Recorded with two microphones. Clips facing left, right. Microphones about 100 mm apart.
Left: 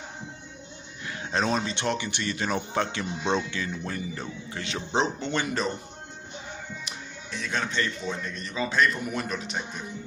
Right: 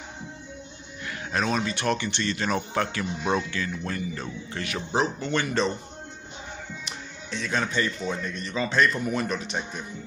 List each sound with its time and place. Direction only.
1.0 s speech: 25° left (ahead or behind)
6.8 s speech: centre (ahead or behind)